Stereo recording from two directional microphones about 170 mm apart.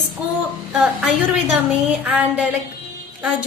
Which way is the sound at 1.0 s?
5° right (ahead or behind).